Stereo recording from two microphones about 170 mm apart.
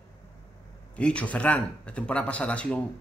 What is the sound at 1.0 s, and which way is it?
Speech, 5° left (ahead or behind).